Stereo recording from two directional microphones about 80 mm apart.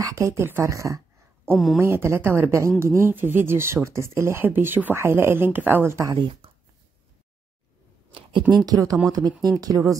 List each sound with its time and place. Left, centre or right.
0.0 s speech: right
8.1 s speech: right